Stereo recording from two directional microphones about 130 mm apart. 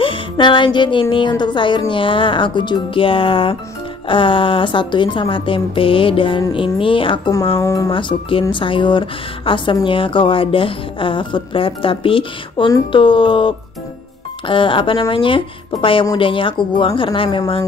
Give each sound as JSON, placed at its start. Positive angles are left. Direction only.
{"t": 0.0, "sound": "music", "side_deg": 40}
{"t": 1.1, "sound": "a woman's voice", "side_deg": 35}
{"t": 7.6, "sound": "speech", "side_deg": 25}
{"t": 7.9, "sound": "a woman's voice", "side_deg": 40}